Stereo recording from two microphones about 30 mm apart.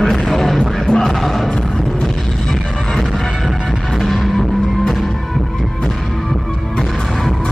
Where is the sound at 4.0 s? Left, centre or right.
Centre.